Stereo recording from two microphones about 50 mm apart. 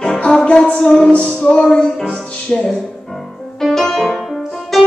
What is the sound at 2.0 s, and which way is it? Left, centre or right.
Music, centre.